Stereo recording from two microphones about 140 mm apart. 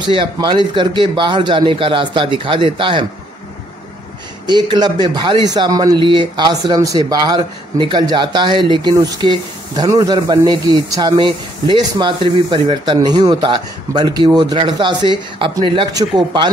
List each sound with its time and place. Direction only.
0.1 s speech: 35° right (ahead or behind)
4.5 s speech: 30° right (ahead or behind)